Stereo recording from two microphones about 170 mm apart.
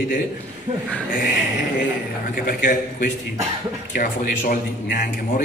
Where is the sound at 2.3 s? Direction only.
55° left (ahead or behind).